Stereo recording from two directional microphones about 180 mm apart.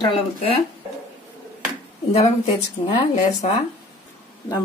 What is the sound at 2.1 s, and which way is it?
Speech, 35° left (ahead or behind).